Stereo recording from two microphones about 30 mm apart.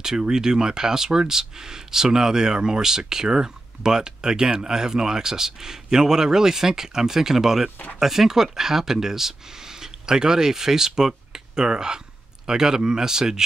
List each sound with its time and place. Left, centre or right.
0.0 s speech: right